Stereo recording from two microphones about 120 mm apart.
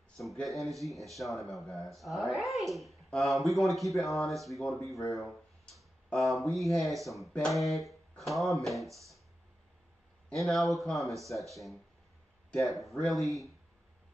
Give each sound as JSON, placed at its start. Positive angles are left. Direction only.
{"t": 0.2, "sound": "speech", "side_deg": 0}
{"t": 4.9, "sound": "speech", "side_deg": 25}
{"t": 5.8, "sound": "speech", "side_deg": 0}
{"t": 7.7, "sound": "a sound", "side_deg": 0}
{"t": 8.6, "sound": "speech", "side_deg": 0}
{"t": 10.3, "sound": "speech", "side_deg": 0}